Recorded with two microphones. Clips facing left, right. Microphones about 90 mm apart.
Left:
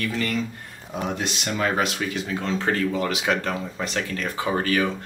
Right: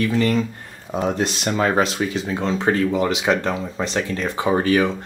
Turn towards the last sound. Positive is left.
turn(degrees=-20)  # may be behind; listen again after turning